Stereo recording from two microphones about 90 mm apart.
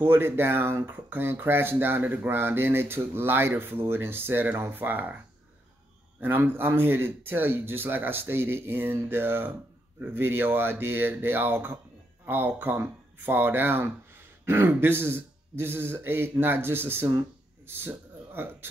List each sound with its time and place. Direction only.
0.0 s speech: 25° right (ahead or behind)
6.2 s speech: 25° right (ahead or behind)
17.1 s a sound: 30° right (ahead or behind)